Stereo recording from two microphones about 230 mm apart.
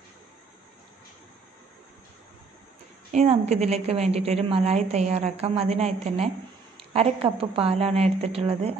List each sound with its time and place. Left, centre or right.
3.1 s a woman's voice: right